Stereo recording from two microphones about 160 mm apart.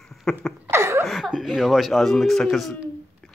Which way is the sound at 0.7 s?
15° right (ahead or behind).